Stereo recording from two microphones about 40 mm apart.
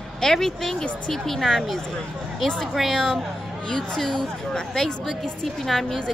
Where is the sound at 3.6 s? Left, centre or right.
Centre.